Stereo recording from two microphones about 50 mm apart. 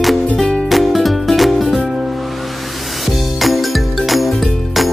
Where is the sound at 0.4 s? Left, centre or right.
Centre.